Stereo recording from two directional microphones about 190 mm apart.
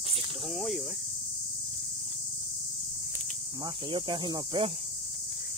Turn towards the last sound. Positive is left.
turn(degrees=-25)  # may be behind; listen again after turning